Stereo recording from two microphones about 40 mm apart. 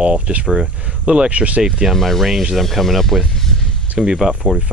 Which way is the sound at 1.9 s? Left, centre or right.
Centre.